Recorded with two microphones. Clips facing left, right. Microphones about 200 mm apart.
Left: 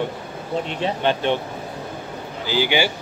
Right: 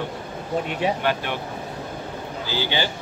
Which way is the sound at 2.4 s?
15° left (ahead or behind).